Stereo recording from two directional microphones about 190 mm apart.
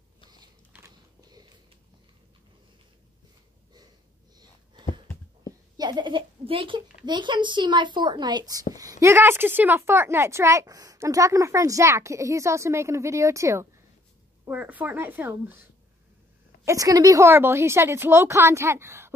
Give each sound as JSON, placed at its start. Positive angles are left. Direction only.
{"t": 0.7, "sound": "a sound", "side_deg": -15}
{"t": 5.8, "sound": "a child's voice", "side_deg": -20}
{"t": 16.6, "sound": "speech", "side_deg": -20}